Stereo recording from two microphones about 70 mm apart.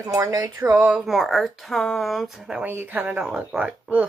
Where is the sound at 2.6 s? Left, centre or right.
Right.